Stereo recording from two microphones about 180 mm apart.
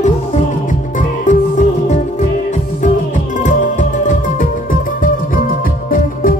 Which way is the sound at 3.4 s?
45° left (ahead or behind).